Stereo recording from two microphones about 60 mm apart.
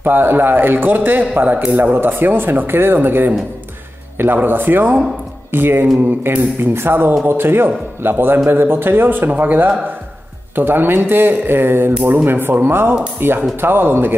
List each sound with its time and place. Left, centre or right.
0.0 s speech: right
4.4 s speech: right